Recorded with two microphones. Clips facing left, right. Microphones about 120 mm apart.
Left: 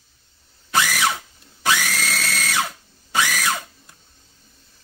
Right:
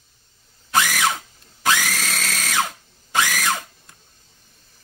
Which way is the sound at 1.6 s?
15° right (ahead or behind).